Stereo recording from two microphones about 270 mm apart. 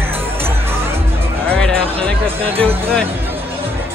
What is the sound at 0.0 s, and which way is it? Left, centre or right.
Music, centre.